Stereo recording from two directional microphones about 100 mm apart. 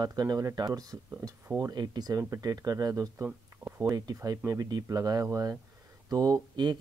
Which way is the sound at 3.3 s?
15° right (ahead or behind).